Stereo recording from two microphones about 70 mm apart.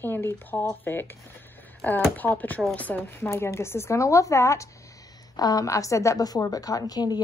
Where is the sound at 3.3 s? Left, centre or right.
Left.